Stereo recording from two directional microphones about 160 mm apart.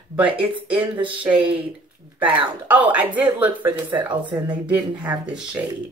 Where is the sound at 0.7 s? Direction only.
30° right (ahead or behind).